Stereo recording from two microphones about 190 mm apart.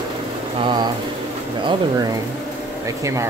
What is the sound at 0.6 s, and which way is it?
Speech, 25° right (ahead or behind).